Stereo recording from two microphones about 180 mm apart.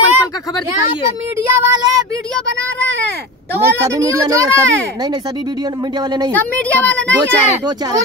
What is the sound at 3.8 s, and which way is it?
A child's voice, 20° right (ahead or behind).